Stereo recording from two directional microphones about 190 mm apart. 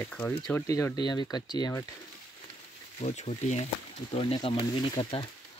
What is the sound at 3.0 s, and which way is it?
Speech, 35° left (ahead or behind).